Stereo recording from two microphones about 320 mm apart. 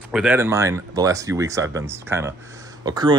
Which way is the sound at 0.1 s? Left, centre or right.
Centre.